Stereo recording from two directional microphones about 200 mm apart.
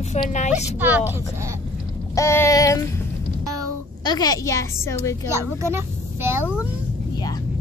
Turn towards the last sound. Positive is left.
turn(degrees=-10)  # may be behind; listen again after turning